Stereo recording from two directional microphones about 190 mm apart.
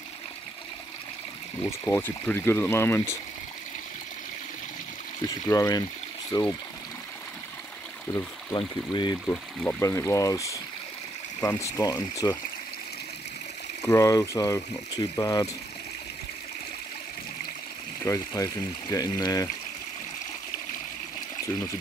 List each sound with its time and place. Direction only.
1.6 s speech: 10° left (ahead or behind)
5.2 s speech: 20° left (ahead or behind)
8.1 s speech: 20° left (ahead or behind)
9.3 s speech: 5° left (ahead or behind)
13.8 s speech: 15° left (ahead or behind)
18.0 s speech: 15° left (ahead or behind)